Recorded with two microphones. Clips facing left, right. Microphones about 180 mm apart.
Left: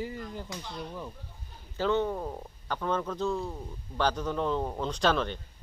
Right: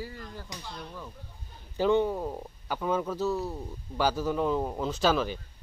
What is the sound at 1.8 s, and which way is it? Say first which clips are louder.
A man's voice: right 3 dB; 15° right (ahead or behind).